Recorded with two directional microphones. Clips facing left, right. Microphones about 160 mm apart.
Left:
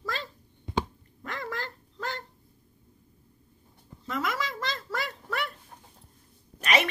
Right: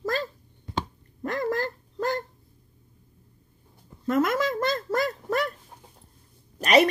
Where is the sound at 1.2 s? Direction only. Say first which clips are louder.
Right 9 dB; 40° right (ahead or behind).